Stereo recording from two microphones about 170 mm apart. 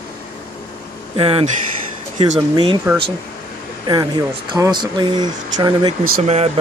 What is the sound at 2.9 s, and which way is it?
Speech, 15° right (ahead or behind).